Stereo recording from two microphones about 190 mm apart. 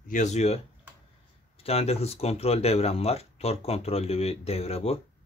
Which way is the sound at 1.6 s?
30° left (ahead or behind).